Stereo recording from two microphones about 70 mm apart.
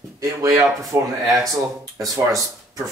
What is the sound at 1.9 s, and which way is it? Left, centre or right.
Speech, right.